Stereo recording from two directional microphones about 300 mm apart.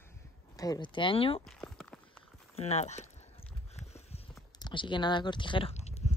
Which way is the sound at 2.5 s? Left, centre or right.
Left.